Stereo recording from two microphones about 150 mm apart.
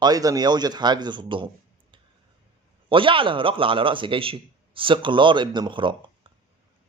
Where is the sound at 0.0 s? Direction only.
25° right (ahead or behind).